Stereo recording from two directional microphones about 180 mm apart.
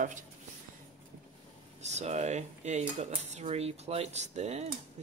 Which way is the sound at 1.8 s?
40° right (ahead or behind).